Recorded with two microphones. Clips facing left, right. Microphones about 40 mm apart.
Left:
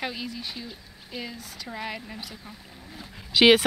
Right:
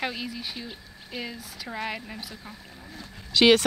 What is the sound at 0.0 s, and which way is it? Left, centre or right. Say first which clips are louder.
Speech: right 1 dB; centre.